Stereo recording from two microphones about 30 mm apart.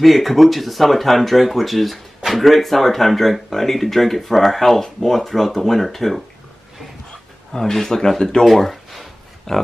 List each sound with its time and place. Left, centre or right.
0.0 s speech: centre
7.5 s speech: centre
8.5 s a sound: centre
9.5 s speech: centre